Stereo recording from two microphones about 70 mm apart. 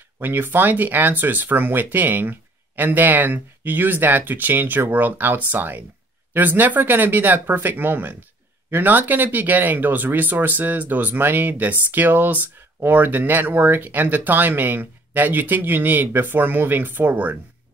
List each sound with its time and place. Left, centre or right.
0.2 s speech: right